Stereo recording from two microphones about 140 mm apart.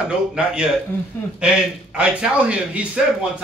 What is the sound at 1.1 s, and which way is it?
Speech, 15° left (ahead or behind).